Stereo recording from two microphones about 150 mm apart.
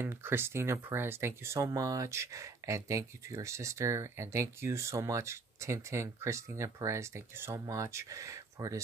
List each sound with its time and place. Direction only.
0.0 s speech: 15° right (ahead or behind)